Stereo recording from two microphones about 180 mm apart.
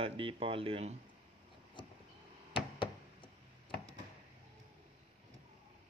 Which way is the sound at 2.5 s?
30° left (ahead or behind).